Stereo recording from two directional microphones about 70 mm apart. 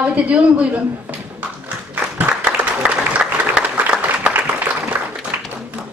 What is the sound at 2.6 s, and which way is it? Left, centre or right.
Applause, centre.